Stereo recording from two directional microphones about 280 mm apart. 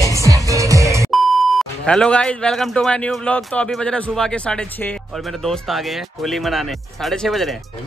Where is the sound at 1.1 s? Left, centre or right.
Centre.